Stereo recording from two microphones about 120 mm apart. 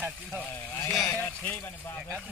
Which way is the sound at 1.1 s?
15° left (ahead or behind).